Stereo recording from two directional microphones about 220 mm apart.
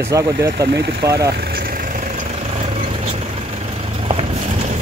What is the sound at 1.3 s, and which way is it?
Vehicle, 45° right (ahead or behind).